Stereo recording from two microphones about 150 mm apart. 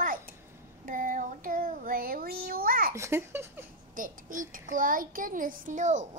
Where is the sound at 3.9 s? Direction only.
65° right (ahead or behind).